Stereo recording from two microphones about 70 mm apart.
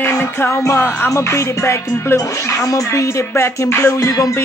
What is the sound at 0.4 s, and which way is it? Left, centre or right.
Music, left.